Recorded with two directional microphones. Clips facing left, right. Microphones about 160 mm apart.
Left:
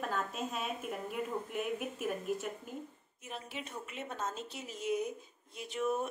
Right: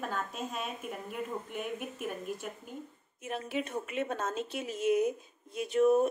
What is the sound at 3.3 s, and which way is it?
A woman's voice, 60° right (ahead or behind).